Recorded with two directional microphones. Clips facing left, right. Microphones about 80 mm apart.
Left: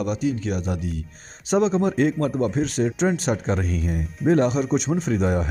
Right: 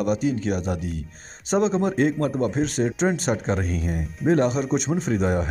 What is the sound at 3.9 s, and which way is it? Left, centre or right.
Speech, centre.